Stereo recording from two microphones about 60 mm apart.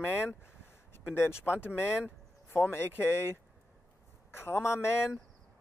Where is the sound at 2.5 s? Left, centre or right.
Left.